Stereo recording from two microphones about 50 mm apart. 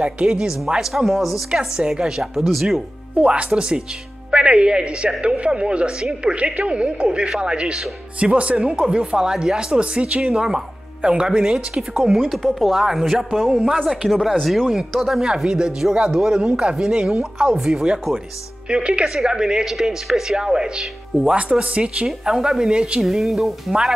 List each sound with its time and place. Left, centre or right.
0.2 s speech: centre
1.5 s speech: centre
3.3 s speech: right
10.4 s speech: centre
12.0 s speech: centre
16.4 s speech: centre
22.0 s speech: centre
23.0 s speech: centre